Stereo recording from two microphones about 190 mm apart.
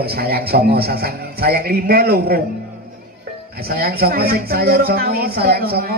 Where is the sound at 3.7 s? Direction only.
50° right (ahead or behind).